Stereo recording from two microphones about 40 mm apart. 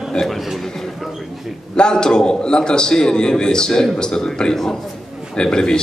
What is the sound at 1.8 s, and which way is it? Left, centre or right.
A man's voice, centre.